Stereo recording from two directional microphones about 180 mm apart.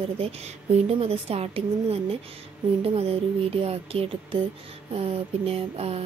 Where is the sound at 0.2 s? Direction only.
35° right (ahead or behind).